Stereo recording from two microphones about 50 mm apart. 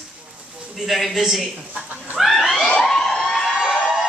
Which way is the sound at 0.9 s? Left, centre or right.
Centre.